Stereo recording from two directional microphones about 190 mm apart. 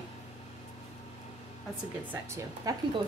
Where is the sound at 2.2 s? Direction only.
15° right (ahead or behind).